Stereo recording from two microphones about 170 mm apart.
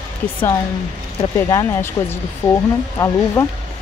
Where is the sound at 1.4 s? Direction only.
20° left (ahead or behind).